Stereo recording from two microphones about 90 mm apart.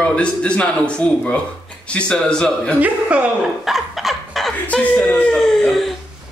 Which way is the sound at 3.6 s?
Centre (ahead or behind).